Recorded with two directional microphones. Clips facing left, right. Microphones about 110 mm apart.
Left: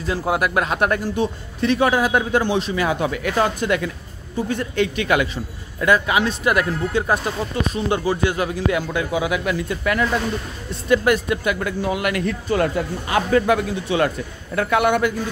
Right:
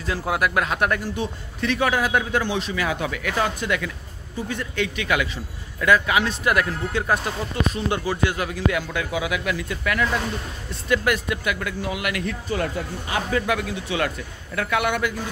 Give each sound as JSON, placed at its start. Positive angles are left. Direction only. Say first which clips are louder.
{"t": 0.0, "sound": "speech", "louder": "left 3 dB", "side_deg": 25}
{"t": 2.4, "sound": "a man's voice", "louder": "left 4 dB", "side_deg": 35}
{"t": 12.4, "sound": "speech", "louder": "left 7 dB", "side_deg": 60}
{"t": 13.5, "sound": "a man's voice", "louder": "left 6 dB", "side_deg": 35}